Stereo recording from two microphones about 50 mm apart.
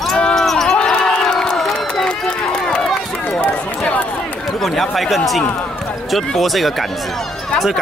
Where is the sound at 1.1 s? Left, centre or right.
Centre.